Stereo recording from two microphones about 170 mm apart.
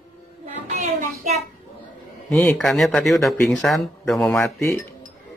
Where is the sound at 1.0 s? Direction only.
45° right (ahead or behind).